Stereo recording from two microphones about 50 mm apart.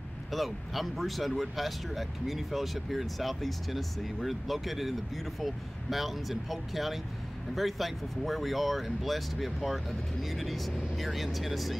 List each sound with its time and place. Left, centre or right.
0.3 s speech: centre